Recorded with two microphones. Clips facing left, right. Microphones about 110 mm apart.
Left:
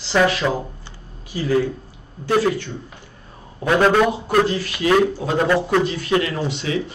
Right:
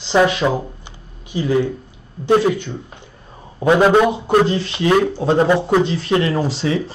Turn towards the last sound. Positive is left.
turn(degrees=-35)  # may be behind; listen again after turning